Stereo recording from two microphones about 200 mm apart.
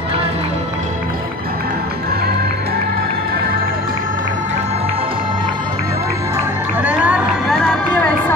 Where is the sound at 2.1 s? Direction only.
50° right (ahead or behind).